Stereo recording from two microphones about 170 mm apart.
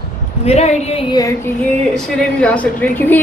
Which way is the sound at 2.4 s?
10° left (ahead or behind).